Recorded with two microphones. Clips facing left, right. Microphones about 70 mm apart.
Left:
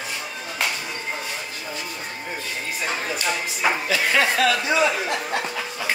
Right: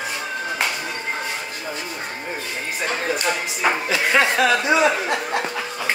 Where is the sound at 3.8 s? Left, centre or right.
Right.